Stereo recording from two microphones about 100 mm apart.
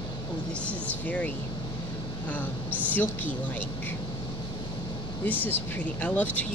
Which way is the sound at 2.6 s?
15° right (ahead or behind).